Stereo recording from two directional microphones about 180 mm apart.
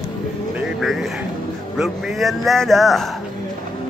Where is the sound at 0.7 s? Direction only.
Centre (ahead or behind).